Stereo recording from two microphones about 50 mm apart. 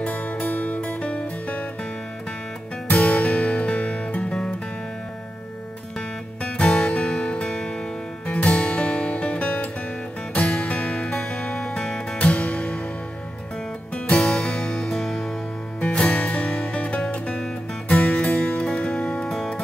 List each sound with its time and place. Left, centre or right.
0.5 s music: left
2.9 s music: left
5.9 s music: centre
12.2 s music: left
13.9 s music: left
15.8 s music: left
19.2 s music: centre